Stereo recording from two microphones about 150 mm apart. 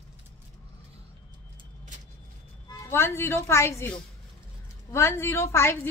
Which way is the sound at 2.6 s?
15° left (ahead or behind).